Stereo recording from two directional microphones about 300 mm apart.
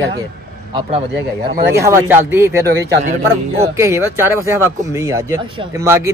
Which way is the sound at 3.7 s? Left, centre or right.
Centre.